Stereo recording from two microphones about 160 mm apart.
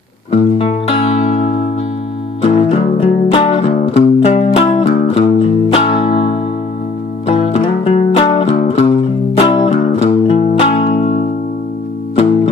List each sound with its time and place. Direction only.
0.3 s music: 40° left (ahead or behind)